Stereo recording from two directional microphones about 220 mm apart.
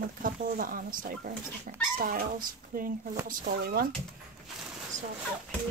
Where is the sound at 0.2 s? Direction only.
40° right (ahead or behind).